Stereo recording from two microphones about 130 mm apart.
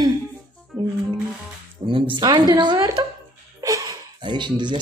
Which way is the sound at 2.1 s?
35° right (ahead or behind).